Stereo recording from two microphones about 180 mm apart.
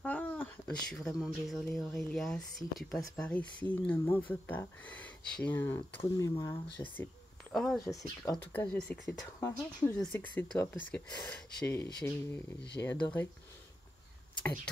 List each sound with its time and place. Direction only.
0.0 s speech: 10° left (ahead or behind)
7.8 s speech: 15° left (ahead or behind)
8.5 s speech: 5° left (ahead or behind)